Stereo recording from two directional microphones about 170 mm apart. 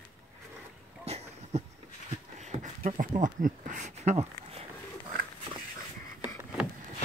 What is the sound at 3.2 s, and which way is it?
Speech, 50° right (ahead or behind).